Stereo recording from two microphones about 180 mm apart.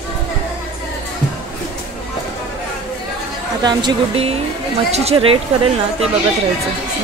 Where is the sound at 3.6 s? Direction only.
30° right (ahead or behind).